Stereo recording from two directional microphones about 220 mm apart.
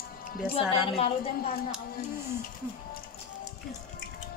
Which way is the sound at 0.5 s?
25° left (ahead or behind).